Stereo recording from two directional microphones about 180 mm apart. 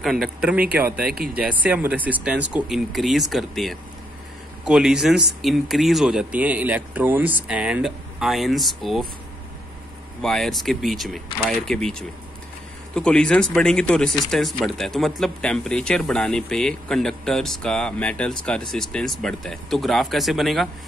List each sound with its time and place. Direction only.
0.0 s speech: centre (ahead or behind)
10.2 s speech: centre (ahead or behind)